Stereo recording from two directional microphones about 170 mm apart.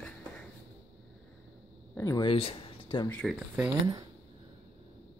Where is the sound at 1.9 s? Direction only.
15° left (ahead or behind).